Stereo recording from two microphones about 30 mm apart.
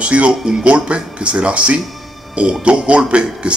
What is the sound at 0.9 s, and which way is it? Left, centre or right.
A man's voice, right.